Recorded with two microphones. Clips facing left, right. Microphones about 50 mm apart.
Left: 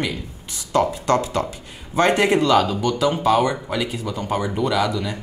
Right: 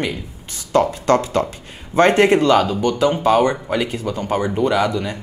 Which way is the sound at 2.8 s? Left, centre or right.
Right.